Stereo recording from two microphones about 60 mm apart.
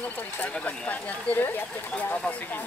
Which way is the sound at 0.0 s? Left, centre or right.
Left.